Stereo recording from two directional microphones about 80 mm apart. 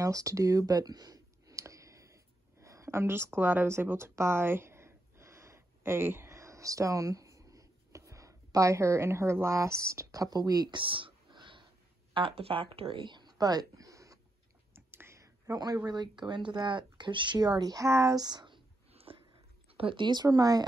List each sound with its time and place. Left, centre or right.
0.0 s a sound: right
12.1 s speech: right
14.7 s whispering: right
15.5 s speech: right
19.9 s speech: right
20.2 s speech: right